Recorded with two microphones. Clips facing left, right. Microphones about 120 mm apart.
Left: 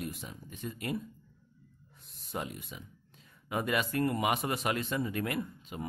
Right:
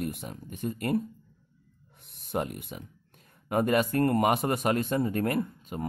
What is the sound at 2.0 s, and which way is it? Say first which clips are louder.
Speech: right 7 dB; 60° right (ahead or behind).